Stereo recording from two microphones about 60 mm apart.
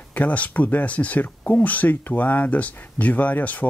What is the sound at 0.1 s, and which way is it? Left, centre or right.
Speech, left.